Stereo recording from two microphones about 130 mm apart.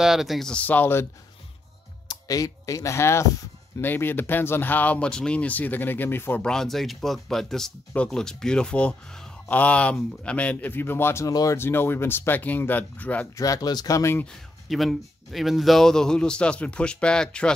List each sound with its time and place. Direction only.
0.0 s speech: 5° right (ahead or behind); by 1.0 s 15° left (ahead or behind)
2.0 s speech: 25° left (ahead or behind)
6.4 s speech: 5° left (ahead or behind)
13.4 s speech: 30° left (ahead or behind)
14.2 s a man's voice: centre (ahead or behind)